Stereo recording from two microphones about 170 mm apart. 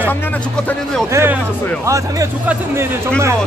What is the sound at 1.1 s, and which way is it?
Speech, 15° right (ahead or behind).